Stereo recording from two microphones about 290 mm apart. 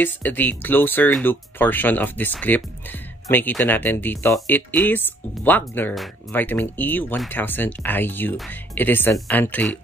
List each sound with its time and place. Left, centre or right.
0.0 s speech: centre